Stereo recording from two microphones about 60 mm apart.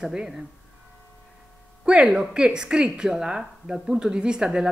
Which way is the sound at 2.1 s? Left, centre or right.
Centre.